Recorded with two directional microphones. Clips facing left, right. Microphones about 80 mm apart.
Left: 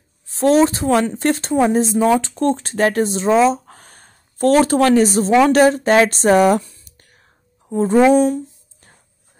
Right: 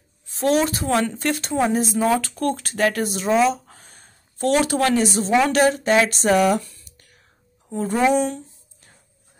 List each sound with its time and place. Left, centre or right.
0.3 s speech: left
3.7 s a sound: left
5.4 s speech: left
6.8 s whispering: left
7.7 s speech: left